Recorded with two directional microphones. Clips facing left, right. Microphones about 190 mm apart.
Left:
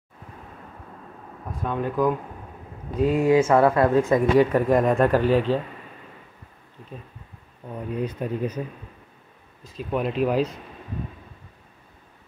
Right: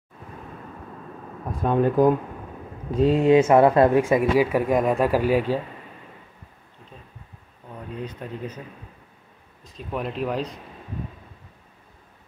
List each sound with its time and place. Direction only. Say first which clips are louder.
1.6 s speech: right 5 dB; 35° right (ahead or behind)
4.0 s speech: left 1 dB; 10° right (ahead or behind)
8.0 s speech: left 6 dB; 10° left (ahead or behind)
9.6 s speech: left 4 dB; 5° left (ahead or behind)